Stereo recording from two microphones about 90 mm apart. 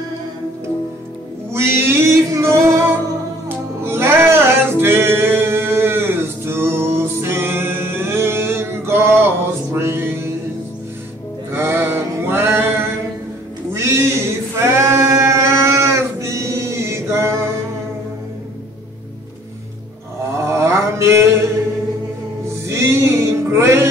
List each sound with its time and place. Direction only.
1.5 s male singing: 30° right (ahead or behind)
3.4 s music: 25° right (ahead or behind)
11.5 s male singing: 25° right (ahead or behind)
13.7 s a sound: 30° right (ahead or behind)
14.8 s sheep: 30° right (ahead or behind)
20.3 s mantra: 30° right (ahead or behind)
22.7 s music: 30° right (ahead or behind)